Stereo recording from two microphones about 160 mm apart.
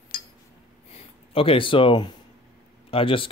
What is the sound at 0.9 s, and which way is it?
Speech, 35° left (ahead or behind).